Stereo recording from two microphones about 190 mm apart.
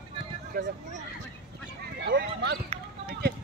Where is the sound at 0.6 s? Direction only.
50° right (ahead or behind).